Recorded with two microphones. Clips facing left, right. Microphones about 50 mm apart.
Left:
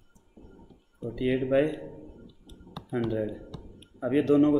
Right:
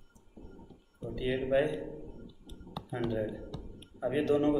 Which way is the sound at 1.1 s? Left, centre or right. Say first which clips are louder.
Left 4 dB; left.